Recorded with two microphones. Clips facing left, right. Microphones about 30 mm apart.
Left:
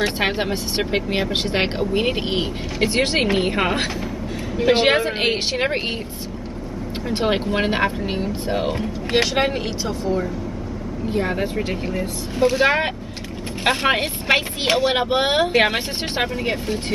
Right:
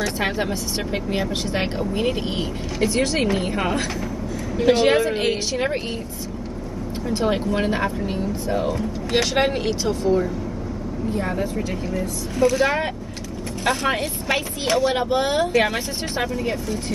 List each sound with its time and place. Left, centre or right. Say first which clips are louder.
0.0 s speech: left 2 dB; left
7.1 s speech: left 1 dB; left
9.1 s speech: left 1 dB; centre
11.1 s speech: left 3 dB; left